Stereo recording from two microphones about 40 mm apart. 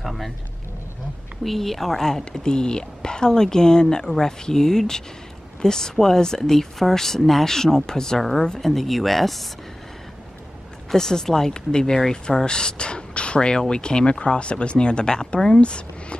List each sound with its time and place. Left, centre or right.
0.0 s speech: centre
1.4 s speech: centre
10.9 s speech: centre